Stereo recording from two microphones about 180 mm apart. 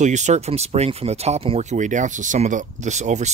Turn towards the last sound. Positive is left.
turn(degrees=-40)  # may be behind; listen again after turning